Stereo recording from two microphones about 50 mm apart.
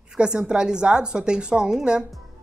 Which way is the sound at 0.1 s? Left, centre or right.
Centre.